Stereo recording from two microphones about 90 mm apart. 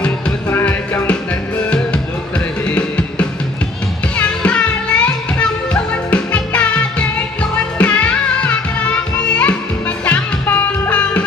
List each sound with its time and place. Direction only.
0.5 s music: 25° left (ahead or behind)